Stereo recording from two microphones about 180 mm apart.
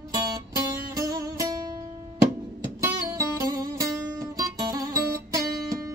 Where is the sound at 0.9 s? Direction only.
20° right (ahead or behind).